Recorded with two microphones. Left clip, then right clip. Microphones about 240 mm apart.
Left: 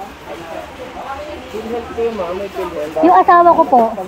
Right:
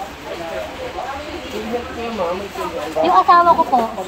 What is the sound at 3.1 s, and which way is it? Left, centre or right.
Speech, left.